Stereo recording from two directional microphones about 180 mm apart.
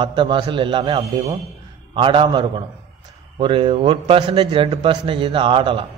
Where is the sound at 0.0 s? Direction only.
25° right (ahead or behind).